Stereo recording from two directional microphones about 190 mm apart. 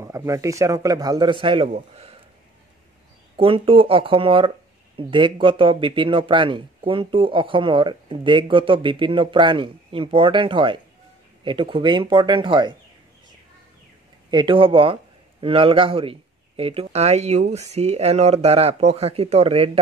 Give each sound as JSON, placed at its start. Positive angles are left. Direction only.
{"t": 0.0, "sound": "a man's voice", "side_deg": -15}
{"t": 3.3, "sound": "speech", "side_deg": -30}
{"t": 14.3, "sound": "speech", "side_deg": -25}